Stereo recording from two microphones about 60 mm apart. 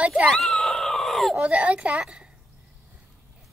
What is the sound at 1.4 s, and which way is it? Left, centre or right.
Speech, right.